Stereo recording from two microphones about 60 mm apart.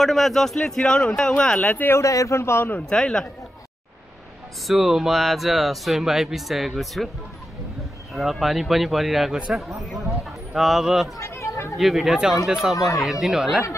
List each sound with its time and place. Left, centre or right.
0.0 s speech: centre
1.6 s speech: left
1.9 s a man's voice: left
2.9 s speech: centre
4.6 s speech: centre
8.1 s speech: centre
11.1 s chatter: left
11.7 s speech: centre